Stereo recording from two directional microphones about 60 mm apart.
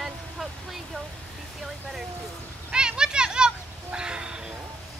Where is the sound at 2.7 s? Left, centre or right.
Centre.